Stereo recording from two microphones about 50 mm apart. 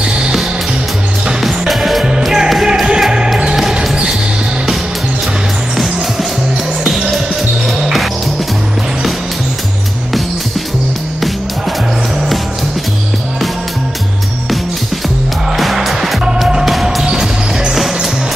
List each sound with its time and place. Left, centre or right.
0.0 s music: centre
1.7 s music: centre
2.0 s music: centre
3.7 s basketball bounce: centre
7.6 s music: centre
15.5 s music: centre
16.4 s music: centre